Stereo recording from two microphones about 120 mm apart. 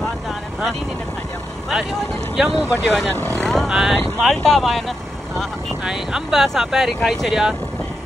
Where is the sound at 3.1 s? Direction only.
20° right (ahead or behind).